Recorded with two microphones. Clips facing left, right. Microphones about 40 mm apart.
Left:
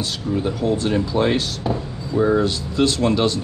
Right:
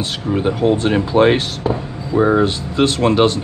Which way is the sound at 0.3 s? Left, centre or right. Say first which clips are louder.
Right 5 dB; right.